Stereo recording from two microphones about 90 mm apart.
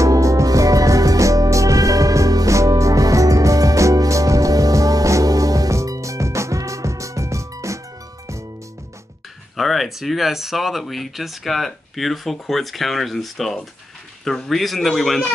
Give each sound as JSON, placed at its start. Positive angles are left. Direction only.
{"t": 0.0, "sound": "music", "side_deg": -35}
{"t": 9.6, "sound": "speech", "side_deg": 0}